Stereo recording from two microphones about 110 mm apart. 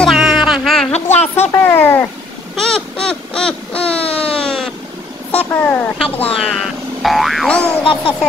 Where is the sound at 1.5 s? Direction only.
20° left (ahead or behind).